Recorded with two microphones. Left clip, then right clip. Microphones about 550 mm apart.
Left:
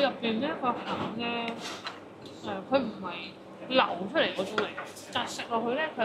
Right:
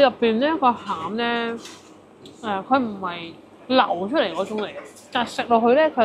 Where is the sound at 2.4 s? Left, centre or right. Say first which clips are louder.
Right 8 dB; right.